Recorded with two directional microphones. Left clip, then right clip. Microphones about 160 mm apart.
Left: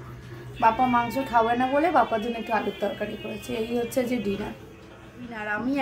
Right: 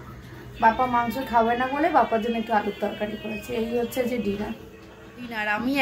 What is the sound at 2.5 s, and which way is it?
Speech, 15° left (ahead or behind).